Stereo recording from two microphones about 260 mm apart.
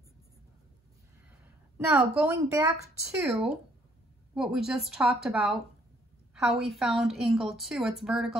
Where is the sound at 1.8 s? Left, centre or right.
Centre.